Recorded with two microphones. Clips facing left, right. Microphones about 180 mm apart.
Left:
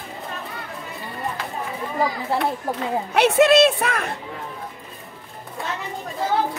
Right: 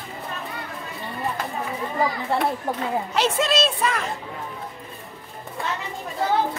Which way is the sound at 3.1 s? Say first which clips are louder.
Left 8 dB; 65° left (ahead or behind).